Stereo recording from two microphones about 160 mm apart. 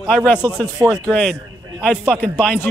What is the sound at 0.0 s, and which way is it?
A man's voice, 5° left (ahead or behind).